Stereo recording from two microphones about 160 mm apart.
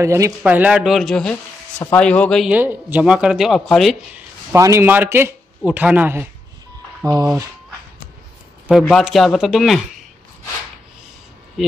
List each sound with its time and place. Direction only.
0.0 s speech: 20° right (ahead or behind); by 2.4 s 5° left (ahead or behind)
2.4 s speech: 10° right (ahead or behind)
4.5 s a man's voice: 20° right (ahead or behind)
8.6 s speech: centre (ahead or behind)